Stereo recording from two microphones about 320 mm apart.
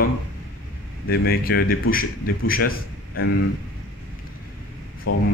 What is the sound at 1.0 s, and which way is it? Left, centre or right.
A man's voice, left.